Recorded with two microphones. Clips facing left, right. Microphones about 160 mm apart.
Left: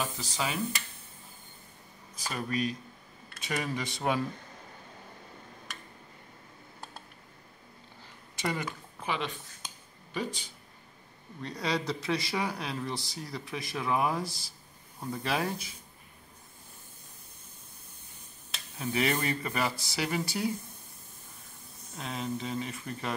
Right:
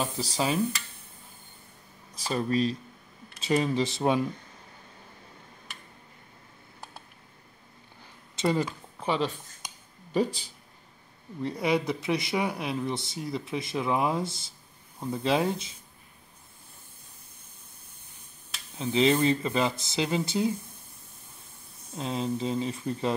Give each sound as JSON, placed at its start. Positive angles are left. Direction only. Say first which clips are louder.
{"t": 0.3, "sound": "speech", "louder": "right 8 dB", "side_deg": -30}
{"t": 2.2, "sound": "speech", "louder": "right 6 dB", "side_deg": -30}
{"t": 8.4, "sound": "speech", "louder": "right 7 dB", "side_deg": -30}
{"t": 11.4, "sound": "speech", "louder": "right 5 dB", "side_deg": -20}
{"t": 18.8, "sound": "speech", "louder": "right 7 dB", "side_deg": -20}
{"t": 21.9, "sound": "speech", "louder": "right 5 dB", "side_deg": -30}